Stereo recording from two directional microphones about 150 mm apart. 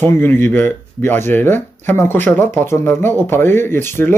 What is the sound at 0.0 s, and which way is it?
Speech, 15° left (ahead or behind).